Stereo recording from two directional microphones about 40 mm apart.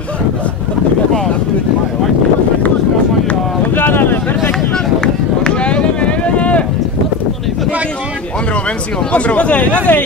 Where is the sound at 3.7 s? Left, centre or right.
Left.